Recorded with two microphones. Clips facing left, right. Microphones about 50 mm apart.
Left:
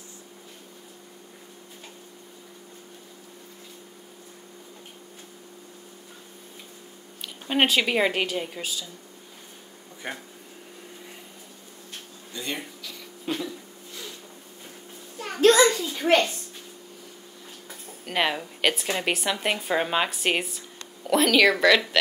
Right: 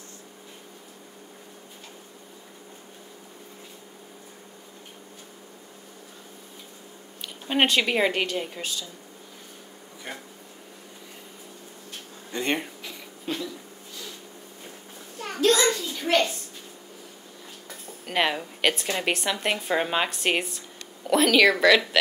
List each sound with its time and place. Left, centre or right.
7.4 s a woman's voice: centre
10.1 s speech: left
12.3 s speech: right
13.3 s speech: centre
15.1 s a sound: centre
15.7 s a sound: centre
18.0 s a woman's voice: centre